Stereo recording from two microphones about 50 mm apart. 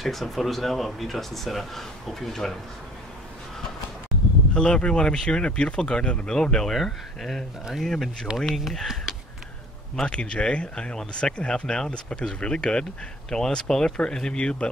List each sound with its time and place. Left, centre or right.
0.0 s speech: centre
4.6 s speech: centre
6.6 s speech: centre
8.5 s speech: centre
10.0 s speech: centre